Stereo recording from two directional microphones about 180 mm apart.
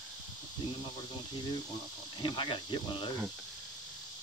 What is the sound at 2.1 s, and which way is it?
Speech, 30° left (ahead or behind).